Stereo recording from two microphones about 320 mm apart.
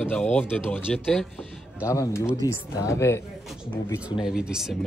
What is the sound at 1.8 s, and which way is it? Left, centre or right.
Speech, centre.